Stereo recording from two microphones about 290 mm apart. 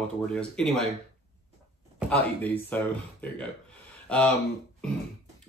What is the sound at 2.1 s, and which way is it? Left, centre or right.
Speech, centre.